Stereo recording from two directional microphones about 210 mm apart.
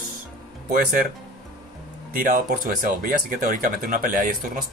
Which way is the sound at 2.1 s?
40° right (ahead or behind).